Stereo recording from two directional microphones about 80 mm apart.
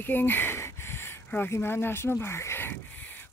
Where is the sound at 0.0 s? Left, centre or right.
Left.